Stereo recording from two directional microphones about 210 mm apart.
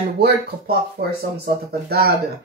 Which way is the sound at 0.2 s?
45° right (ahead or behind).